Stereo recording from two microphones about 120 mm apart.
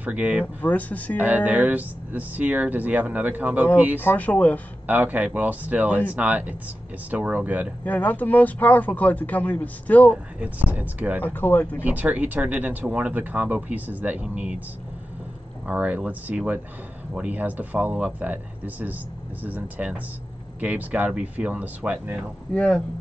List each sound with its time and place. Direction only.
0.0 s speech: 10° right (ahead or behind)
0.6 s speech: 15° left (ahead or behind)
1.1 s speech: 15° right (ahead or behind)
4.0 s speech: 15° left (ahead or behind)
4.8 s speech: 15° right (ahead or behind)
7.8 s speech: 15° left (ahead or behind)
10.4 s speech: 15° right (ahead or behind)
11.2 s speech: 15° left (ahead or behind)
11.8 s speech: 15° right (ahead or behind)
15.6 s speech: 10° right (ahead or behind)
22.5 s speech: 10° left (ahead or behind)